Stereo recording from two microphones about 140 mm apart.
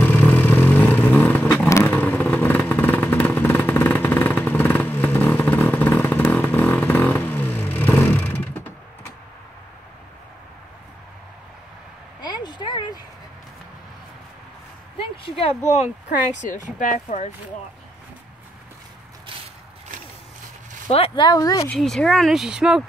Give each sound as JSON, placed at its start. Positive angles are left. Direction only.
{"t": 0.0, "sound": "vehicle", "side_deg": 10}
{"t": 12.2, "sound": "a sound", "side_deg": 30}
{"t": 15.0, "sound": "a sound", "side_deg": 40}
{"t": 16.3, "sound": "speech", "side_deg": 65}
{"t": 21.1, "sound": "speech", "side_deg": 30}
{"t": 21.6, "sound": "speech", "side_deg": 5}